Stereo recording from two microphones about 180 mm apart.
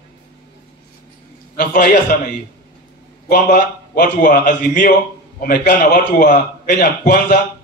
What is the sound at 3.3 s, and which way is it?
A man's voice, 55° left (ahead or behind).